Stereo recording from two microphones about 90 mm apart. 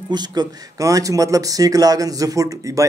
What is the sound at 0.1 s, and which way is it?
Speech, 50° right (ahead or behind).